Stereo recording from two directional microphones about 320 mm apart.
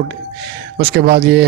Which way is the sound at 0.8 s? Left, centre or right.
Right.